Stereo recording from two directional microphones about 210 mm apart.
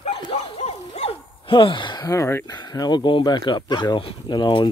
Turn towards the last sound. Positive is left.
turn(degrees=20)  # may be behind; listen again after turning